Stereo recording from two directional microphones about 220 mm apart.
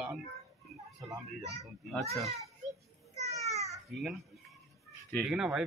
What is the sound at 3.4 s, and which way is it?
Babbling, 30° right (ahead or behind).